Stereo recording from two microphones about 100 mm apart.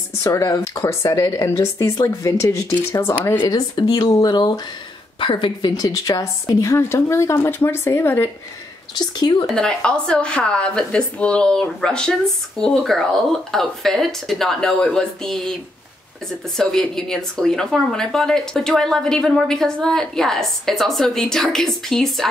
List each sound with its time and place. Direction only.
0.2 s speech: 35° left (ahead or behind)
3.4 s a woman's voice: 40° left (ahead or behind)
5.8 s a woman's voice: 35° left (ahead or behind)
8.9 s speech: 45° left (ahead or behind)
9.5 s a woman's voice: 10° left (ahead or behind)
16.5 s speech: 5° left (ahead or behind)